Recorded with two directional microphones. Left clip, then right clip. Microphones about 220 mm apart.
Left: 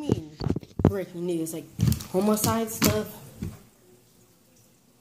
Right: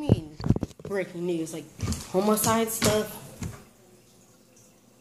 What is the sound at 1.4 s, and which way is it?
Speech, 30° left (ahead or behind).